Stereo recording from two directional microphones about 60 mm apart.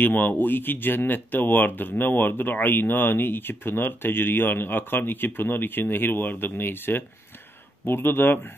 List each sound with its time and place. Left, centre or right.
0.0 s speech: left